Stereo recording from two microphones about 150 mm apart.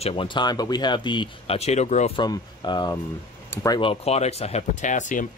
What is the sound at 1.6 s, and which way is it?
Speech, 50° left (ahead or behind).